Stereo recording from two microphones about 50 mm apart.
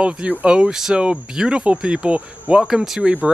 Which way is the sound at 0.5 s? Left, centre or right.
Centre.